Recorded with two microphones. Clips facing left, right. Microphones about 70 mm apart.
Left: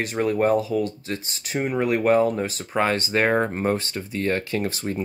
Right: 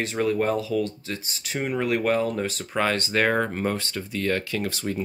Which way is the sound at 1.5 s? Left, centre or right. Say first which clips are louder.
Left 2 dB; left.